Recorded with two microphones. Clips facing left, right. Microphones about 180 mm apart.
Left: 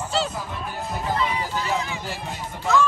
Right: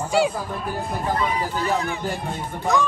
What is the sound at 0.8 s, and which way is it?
Speech, 55° right (ahead or behind).